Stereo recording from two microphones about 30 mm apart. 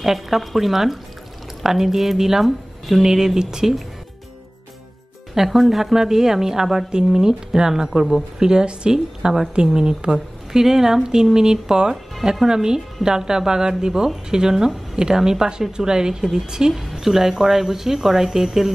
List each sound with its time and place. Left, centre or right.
0.0 s speech: centre
5.3 s speech: centre; by 10.1 s right
10.1 s speech: centre
16.9 s speech: centre